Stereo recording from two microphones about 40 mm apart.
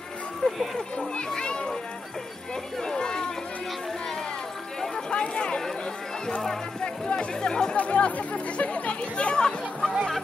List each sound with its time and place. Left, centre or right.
0.4 s music: centre
1.3 s children playing: left
2.8 s a sound: centre
4.7 s a sound: centre
5.1 s speech: left
6.8 s speech: left
7.7 s speech: left